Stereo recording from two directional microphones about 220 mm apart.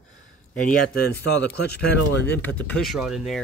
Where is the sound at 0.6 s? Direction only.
40° left (ahead or behind).